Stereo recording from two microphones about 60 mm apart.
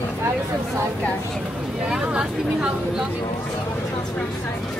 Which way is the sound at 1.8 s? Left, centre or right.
Centre.